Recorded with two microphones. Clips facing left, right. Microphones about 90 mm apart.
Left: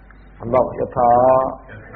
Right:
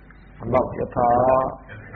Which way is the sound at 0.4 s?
5° left (ahead or behind).